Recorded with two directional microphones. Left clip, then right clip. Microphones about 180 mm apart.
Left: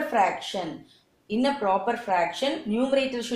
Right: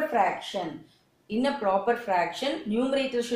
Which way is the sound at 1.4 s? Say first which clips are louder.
Left 1 dB; 25° left (ahead or behind).